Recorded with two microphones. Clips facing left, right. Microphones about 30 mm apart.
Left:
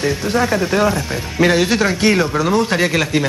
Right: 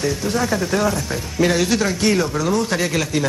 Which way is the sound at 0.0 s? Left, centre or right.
Left.